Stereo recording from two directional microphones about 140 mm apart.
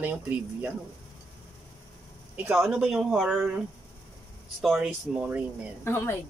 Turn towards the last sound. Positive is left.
turn(degrees=15)  # may be behind; listen again after turning